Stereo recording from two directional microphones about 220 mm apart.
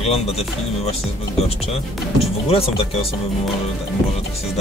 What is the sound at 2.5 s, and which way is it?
Speech, 25° left (ahead or behind).